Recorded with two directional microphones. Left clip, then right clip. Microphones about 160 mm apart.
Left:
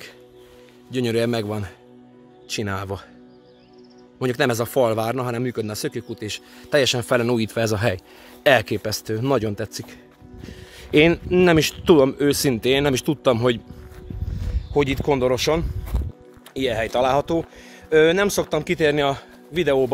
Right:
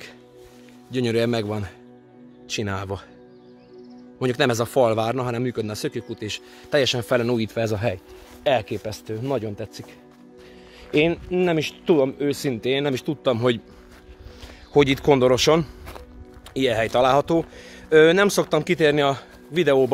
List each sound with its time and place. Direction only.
0.9 s a man's voice: 5° left (ahead or behind)
4.2 s a man's voice: centre (ahead or behind); by 8.0 s 20° left (ahead or behind)
8.5 s speech: 30° left (ahead or behind)
14.3 s speech: 35° right (ahead or behind); by 19.2 s 10° right (ahead or behind)
19.5 s speech: 25° right (ahead or behind)